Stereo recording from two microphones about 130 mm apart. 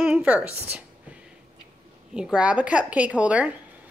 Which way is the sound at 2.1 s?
5° right (ahead or behind).